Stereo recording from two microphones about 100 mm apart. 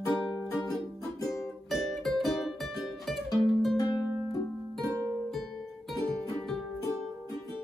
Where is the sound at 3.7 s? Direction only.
35° left (ahead or behind).